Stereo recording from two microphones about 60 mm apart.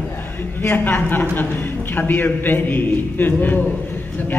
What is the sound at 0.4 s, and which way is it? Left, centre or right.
A woman's voice, left.